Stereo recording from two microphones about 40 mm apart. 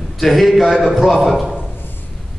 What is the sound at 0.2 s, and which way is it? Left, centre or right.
A man's voice, centre.